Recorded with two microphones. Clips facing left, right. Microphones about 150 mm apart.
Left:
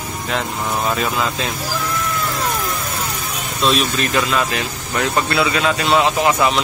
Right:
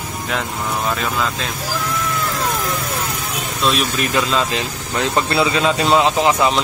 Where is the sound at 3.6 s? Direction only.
Centre (ahead or behind).